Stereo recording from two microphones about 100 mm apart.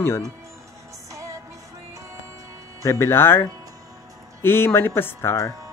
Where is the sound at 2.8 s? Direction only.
25° left (ahead or behind).